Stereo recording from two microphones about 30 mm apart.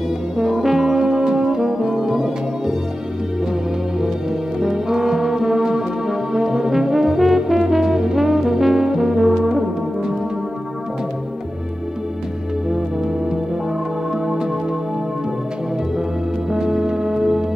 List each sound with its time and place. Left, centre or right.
0.4 s brass instrument: centre
4.0 s brass instrument: centre
9.5 s music: centre
12.6 s music: centre
16.4 s music: centre